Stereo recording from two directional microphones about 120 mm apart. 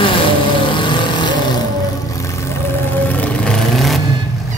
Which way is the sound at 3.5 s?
Centre (ahead or behind).